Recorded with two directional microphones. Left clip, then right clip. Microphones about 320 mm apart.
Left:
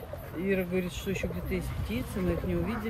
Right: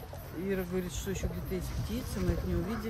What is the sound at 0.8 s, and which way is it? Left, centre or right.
Speech, centre.